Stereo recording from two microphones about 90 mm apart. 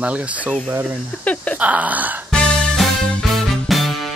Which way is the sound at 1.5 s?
15° right (ahead or behind).